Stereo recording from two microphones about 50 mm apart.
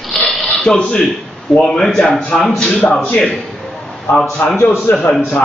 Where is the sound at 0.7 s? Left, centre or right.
Centre.